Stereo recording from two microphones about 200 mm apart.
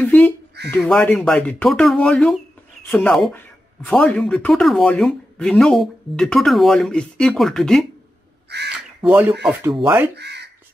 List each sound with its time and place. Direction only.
0.0 s speech: 10° left (ahead or behind)
8.5 s speech: 55° right (ahead or behind)
9.0 s speech: 5° right (ahead or behind)
10.1 s crow: 55° right (ahead or behind)